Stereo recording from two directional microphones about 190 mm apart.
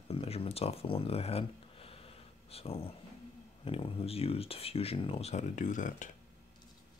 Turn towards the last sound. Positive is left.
turn(degrees=40)  # may be behind; listen again after turning